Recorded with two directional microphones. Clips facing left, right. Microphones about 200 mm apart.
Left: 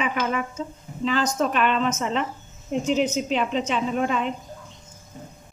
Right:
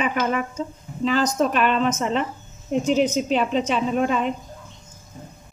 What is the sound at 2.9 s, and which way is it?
A woman's voice, 40° right (ahead or behind).